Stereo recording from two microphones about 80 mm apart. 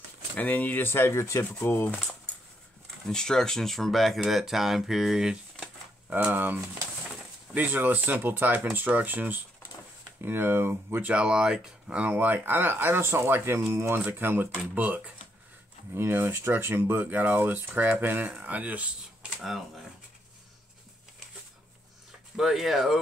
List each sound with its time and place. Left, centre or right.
0.4 s speech: left
1.5 s speech: left
3.1 s speech: centre
6.1 s speech: right
11.1 s speech: centre
15.9 s speech: right
19.3 s a sound: centre
22.4 s speech: centre